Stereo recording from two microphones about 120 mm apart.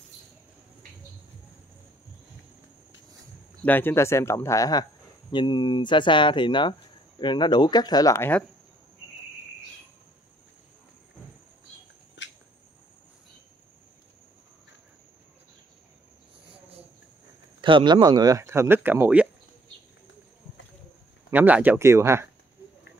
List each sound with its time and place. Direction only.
3.6 s speech: 15° left (ahead or behind)
8.2 s speech: 15° left (ahead or behind)
17.6 s speech: 45° right (ahead or behind); by 19.2 s 15° right (ahead or behind)
21.3 s speech: 15° right (ahead or behind)